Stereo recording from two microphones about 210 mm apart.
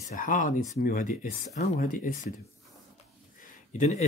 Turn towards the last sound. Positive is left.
turn(degrees=35)  # may be behind; listen again after turning